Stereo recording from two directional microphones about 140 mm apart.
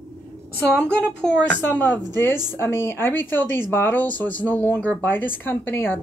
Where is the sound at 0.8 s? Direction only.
5° left (ahead or behind).